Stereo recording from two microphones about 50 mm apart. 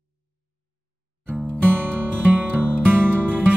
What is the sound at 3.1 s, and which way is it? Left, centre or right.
Music, centre.